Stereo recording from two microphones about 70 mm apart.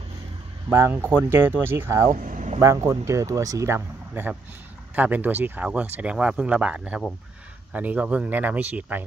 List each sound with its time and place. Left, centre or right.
0.7 s speech: right
2.6 s speech: right
4.9 s speech: right